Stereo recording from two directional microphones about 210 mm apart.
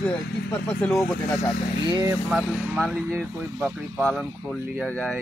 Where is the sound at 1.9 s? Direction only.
20° right (ahead or behind).